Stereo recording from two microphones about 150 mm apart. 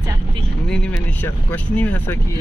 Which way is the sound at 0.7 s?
10° left (ahead or behind).